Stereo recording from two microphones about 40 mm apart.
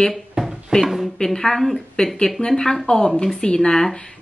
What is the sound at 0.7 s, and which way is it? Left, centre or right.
Speech, centre.